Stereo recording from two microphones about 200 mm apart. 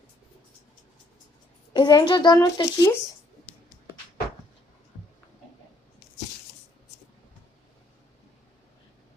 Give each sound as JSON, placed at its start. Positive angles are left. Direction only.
{"t": 1.7, "sound": "a child's voice", "side_deg": 20}